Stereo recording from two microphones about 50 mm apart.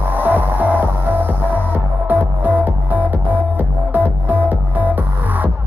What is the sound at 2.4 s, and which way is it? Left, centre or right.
Music, right.